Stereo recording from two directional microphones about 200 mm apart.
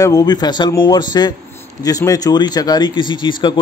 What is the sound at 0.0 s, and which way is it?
A man's voice, 20° left (ahead or behind).